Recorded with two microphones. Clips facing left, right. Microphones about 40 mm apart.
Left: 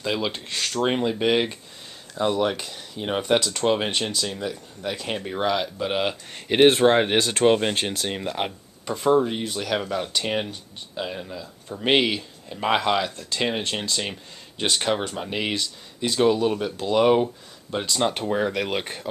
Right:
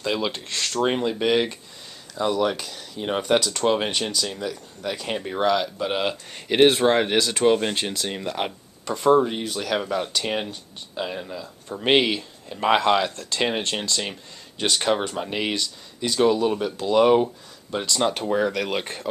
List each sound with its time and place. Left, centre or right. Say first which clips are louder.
0.0 s speech: right 1 dB; centre
6.9 s speech: left 1 dB; centre
13.4 s speech: right 1 dB; centre
13.7 s speech: right 1 dB; centre